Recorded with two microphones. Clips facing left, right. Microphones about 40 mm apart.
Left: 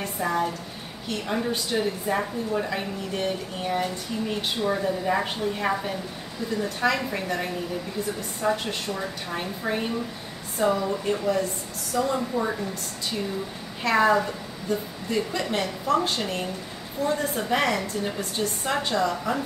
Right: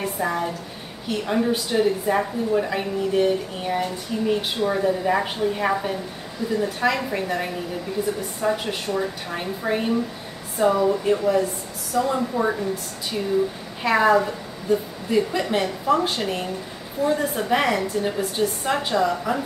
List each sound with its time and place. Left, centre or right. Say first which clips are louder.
0.0 s a woman's voice: right 1 dB; centre
13.8 s speech: right 3 dB; centre